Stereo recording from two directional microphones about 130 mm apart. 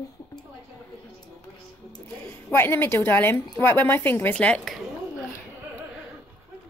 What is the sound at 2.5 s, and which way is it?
Speech, 15° left (ahead or behind).